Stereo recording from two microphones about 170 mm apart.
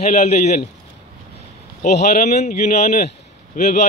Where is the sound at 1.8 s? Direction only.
45° left (ahead or behind).